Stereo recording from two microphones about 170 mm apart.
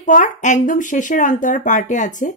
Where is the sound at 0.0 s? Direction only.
50° left (ahead or behind).